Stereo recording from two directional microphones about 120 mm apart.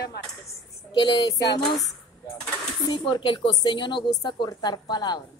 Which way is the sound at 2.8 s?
40° left (ahead or behind).